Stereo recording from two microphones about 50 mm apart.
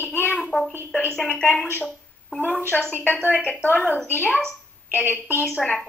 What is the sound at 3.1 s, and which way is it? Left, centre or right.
Speech, left.